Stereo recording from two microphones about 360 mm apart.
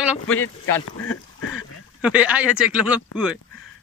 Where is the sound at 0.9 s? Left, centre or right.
Left.